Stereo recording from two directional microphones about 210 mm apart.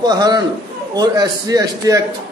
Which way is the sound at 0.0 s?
20° right (ahead or behind).